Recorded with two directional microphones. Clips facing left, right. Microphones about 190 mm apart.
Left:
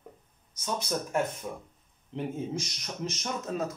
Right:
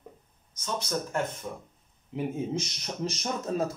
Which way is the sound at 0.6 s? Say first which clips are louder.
Even; 10° left (ahead or behind).